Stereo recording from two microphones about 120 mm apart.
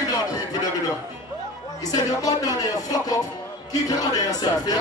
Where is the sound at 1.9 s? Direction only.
30° left (ahead or behind).